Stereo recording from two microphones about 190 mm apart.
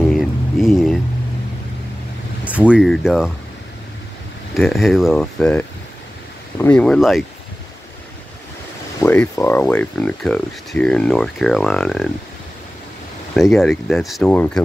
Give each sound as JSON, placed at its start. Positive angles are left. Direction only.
{"t": 0.0, "sound": "a sound", "side_deg": 0}
{"t": 2.4, "sound": "speech", "side_deg": -5}
{"t": 4.6, "sound": "speech", "side_deg": 0}
{"t": 9.0, "sound": "speech", "side_deg": 10}
{"t": 13.4, "sound": "speech", "side_deg": 0}